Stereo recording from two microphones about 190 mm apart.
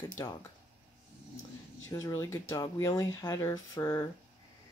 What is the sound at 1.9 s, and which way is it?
Speech, 15° left (ahead or behind).